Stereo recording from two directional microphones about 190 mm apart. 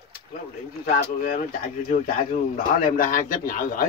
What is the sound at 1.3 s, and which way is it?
Speech, 50° left (ahead or behind).